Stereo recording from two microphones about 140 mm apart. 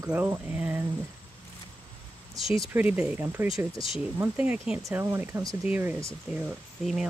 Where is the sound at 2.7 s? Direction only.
10° right (ahead or behind).